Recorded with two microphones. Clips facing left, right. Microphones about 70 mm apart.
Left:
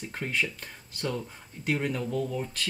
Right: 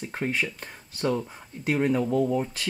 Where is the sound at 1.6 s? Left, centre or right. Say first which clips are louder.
Right 6 dB; centre.